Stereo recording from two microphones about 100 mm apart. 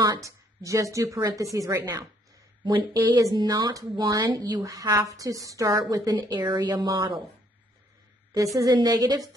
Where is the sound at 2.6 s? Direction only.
45° right (ahead or behind).